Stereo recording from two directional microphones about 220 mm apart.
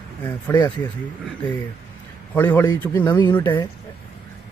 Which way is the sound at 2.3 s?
10° left (ahead or behind).